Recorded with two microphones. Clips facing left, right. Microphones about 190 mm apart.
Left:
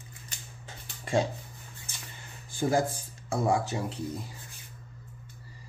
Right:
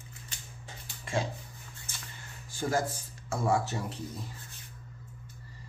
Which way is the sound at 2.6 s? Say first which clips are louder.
Left 4 dB; 15° left (ahead or behind).